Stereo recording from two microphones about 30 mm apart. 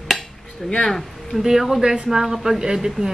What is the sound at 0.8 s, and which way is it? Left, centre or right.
Speech, centre.